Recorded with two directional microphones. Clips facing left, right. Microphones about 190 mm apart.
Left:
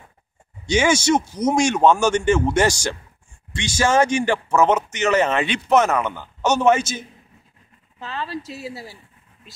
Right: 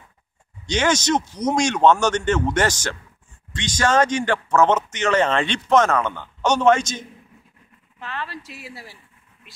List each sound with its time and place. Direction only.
0.7 s speech: 10° left (ahead or behind)
8.0 s speech: 30° left (ahead or behind)